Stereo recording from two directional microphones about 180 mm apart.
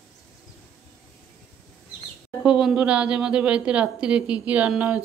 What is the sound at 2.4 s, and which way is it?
A woman's voice, 5° right (ahead or behind).